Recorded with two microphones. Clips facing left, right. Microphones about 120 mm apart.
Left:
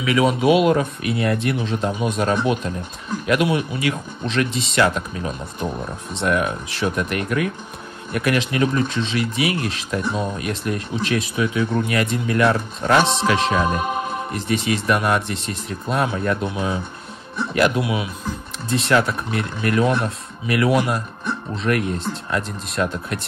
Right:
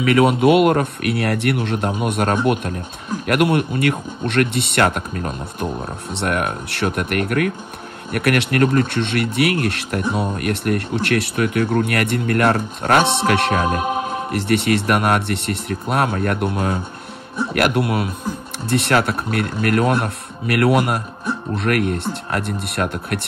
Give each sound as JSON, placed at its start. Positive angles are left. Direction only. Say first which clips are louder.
{"t": 0.0, "sound": "speech", "louder": "right 3 dB", "side_deg": -60}
{"t": 6.2, "sound": "speech", "louder": "left 1 dB", "side_deg": -65}